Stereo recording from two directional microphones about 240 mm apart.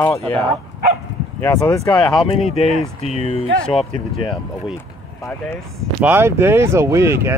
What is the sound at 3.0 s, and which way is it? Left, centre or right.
Speech, left.